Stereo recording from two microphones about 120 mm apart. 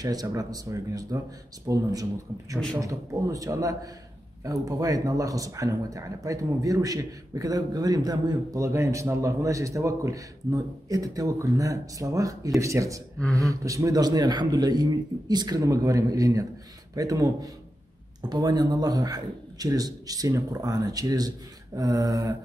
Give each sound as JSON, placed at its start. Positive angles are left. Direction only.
{"t": 0.0, "sound": "a man's voice", "side_deg": -30}